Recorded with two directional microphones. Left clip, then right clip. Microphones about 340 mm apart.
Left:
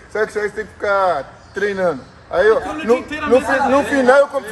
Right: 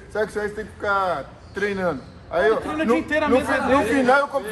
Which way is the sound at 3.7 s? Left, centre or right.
Left.